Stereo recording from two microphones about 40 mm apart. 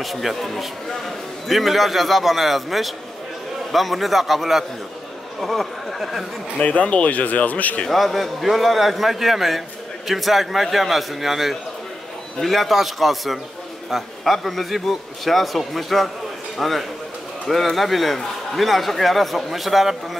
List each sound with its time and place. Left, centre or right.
0.0 s a man's voice: centre
6.6 s speech: left
7.9 s a man's voice: centre